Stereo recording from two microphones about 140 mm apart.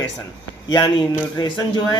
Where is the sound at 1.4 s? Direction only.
30° left (ahead or behind).